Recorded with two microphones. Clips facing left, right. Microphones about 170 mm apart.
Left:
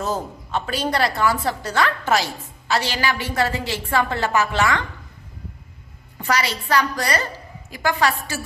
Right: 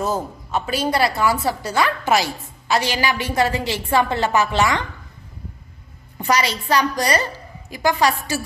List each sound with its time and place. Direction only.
0.0 s a woman's voice: 10° right (ahead or behind)
6.1 s a woman's voice: 20° right (ahead or behind)